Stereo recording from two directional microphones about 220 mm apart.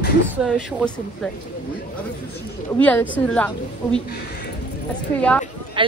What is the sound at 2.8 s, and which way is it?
A woman's voice, 5° left (ahead or behind).